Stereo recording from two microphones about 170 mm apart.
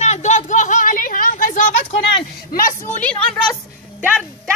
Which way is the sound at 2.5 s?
55° left (ahead or behind).